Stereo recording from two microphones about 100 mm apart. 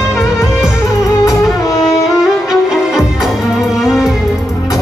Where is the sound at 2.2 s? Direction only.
5° right (ahead or behind).